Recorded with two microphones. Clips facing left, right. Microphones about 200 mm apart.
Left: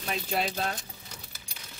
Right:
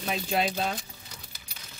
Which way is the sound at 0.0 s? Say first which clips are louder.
Right 3 dB; centre (ahead or behind).